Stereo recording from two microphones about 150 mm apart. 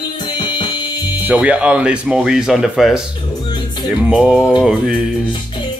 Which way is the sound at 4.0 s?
10° right (ahead or behind).